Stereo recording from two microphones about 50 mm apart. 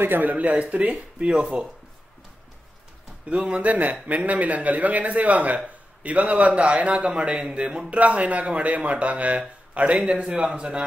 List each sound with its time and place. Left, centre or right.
0.0 s speech: right
0.3 s a man's voice: right
3.3 s a man's voice: right